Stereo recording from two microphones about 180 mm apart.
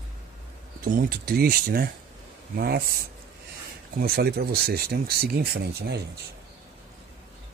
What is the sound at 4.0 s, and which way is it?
Speech, 60° right (ahead or behind).